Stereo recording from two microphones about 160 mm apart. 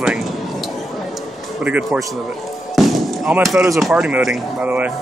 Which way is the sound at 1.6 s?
10° right (ahead or behind).